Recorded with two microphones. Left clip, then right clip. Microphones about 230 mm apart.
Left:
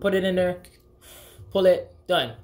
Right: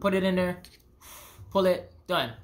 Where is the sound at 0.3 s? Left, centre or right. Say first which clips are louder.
Left 5 dB; centre.